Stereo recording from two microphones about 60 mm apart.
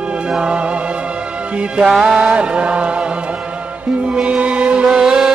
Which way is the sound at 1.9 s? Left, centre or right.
Centre.